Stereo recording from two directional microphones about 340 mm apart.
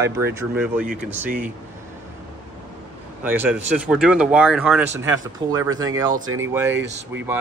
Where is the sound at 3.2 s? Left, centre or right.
Centre.